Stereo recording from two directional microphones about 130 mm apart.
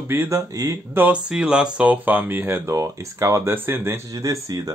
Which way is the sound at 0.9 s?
10° right (ahead or behind).